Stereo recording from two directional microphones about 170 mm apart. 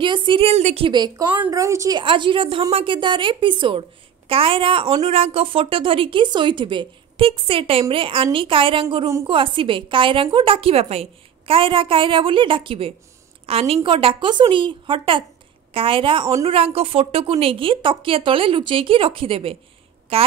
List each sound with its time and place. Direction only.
0.0 s a woman's voice: 30° right (ahead or behind)